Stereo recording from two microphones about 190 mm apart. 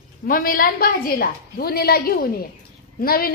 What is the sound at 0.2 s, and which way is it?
A woman's voice, 50° left (ahead or behind).